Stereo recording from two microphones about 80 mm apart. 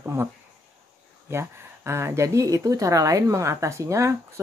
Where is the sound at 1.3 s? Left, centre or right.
Right.